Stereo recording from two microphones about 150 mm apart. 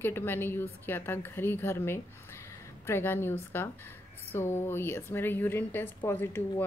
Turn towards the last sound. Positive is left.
turn(degrees=15)  # may be behind; listen again after turning